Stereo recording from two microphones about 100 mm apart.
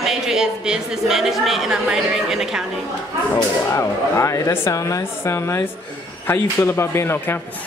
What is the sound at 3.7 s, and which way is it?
A woman's voice, 30° left (ahead or behind).